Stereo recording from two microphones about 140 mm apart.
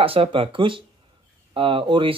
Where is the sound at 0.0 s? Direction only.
40° right (ahead or behind).